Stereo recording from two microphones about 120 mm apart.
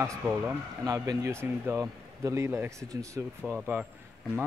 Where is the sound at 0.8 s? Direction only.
25° right (ahead or behind).